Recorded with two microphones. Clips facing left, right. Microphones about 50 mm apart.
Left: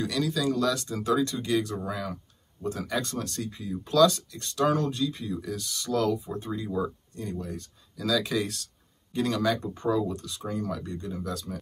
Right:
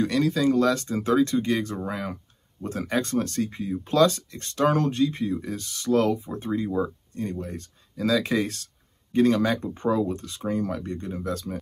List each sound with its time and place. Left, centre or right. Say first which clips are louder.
0.0 s speech: right 5 dB; right